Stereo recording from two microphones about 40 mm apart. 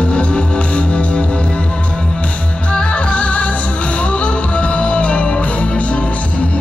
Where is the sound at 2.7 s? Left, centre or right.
Left.